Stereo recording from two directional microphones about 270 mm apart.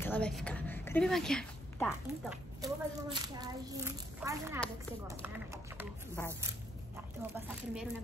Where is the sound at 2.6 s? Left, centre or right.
Centre.